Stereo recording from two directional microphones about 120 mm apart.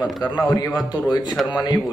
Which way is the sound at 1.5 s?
35° left (ahead or behind).